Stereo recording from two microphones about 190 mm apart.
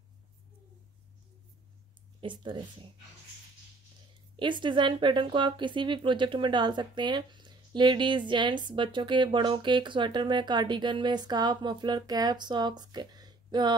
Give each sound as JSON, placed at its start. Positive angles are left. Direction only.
{"t": 2.1, "sound": "speech", "side_deg": -25}
{"t": 4.4, "sound": "speech", "side_deg": -25}